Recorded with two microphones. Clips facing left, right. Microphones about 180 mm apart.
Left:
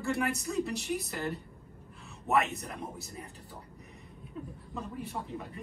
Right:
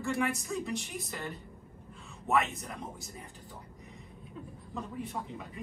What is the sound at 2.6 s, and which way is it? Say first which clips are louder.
Speech: left 1 dB; centre (ahead or behind).